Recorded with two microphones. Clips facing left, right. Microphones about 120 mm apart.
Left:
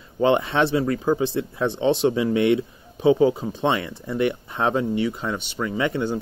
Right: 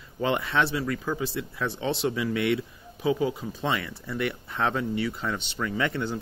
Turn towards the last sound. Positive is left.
turn(degrees=15)  # may be behind; listen again after turning